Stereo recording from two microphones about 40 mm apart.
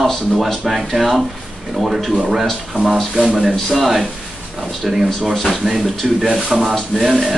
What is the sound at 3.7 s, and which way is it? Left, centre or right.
Speech, centre.